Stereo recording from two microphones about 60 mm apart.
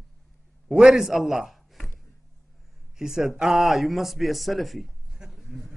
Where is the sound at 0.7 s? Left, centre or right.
Centre.